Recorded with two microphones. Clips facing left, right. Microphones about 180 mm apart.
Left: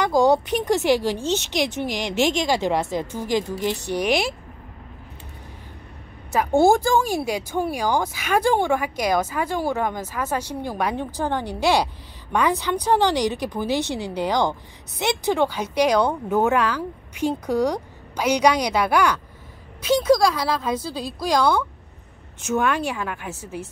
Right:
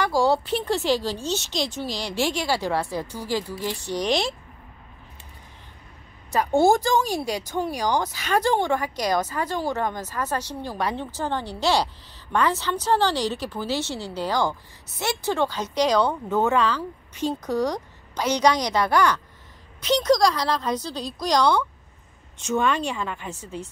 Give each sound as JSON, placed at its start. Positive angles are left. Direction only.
{"t": 0.0, "sound": "speech", "side_deg": 20}
{"t": 6.3, "sound": "speech", "side_deg": 10}